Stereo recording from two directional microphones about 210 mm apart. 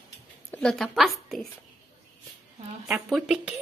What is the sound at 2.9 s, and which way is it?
Speech, centre (ahead or behind).